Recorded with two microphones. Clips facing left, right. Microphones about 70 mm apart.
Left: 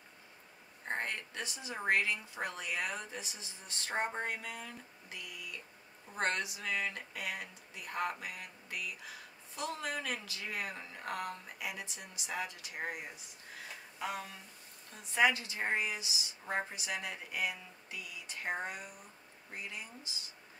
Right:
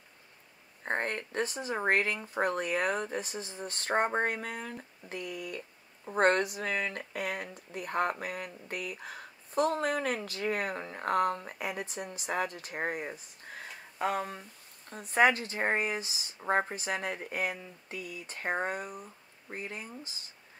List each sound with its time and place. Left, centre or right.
0.8 s speech: right